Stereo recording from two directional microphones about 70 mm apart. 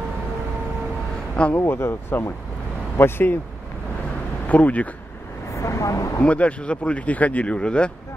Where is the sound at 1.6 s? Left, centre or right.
Left.